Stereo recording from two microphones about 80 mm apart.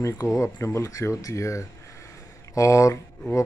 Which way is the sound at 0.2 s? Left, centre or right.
Left.